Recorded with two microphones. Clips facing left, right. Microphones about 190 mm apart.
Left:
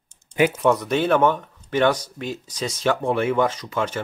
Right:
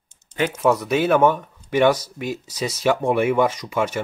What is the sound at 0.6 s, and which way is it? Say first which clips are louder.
Speech: right 1 dB; 5° right (ahead or behind).